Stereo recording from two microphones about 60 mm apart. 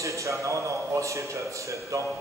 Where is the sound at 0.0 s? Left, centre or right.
Right.